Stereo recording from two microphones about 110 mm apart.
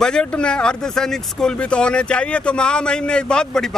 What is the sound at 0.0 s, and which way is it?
Speech, 10° left (ahead or behind).